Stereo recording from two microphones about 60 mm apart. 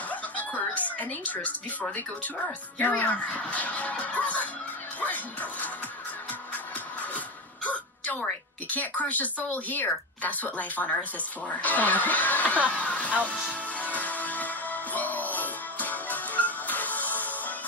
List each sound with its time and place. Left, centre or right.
0.1 s music: left
3.0 s a woman's voice: left
7.6 s a sound: left
8.6 s a woman's voice: left
12.6 s music: left